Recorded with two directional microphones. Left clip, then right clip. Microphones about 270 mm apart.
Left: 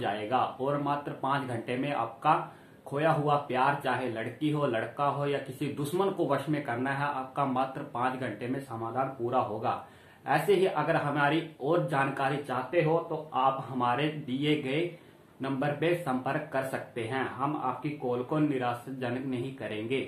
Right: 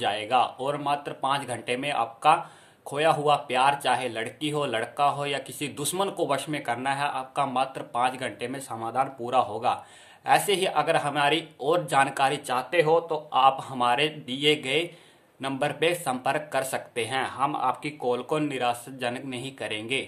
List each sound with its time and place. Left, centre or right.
0.0 s speech: right